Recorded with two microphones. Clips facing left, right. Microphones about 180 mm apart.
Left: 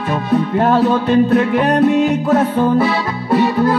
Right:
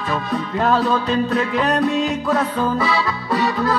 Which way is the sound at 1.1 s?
60° left (ahead or behind).